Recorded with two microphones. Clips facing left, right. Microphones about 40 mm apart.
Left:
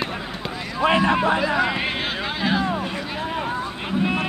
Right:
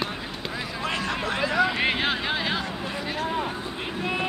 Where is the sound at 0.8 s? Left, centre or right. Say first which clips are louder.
Left 11 dB; left.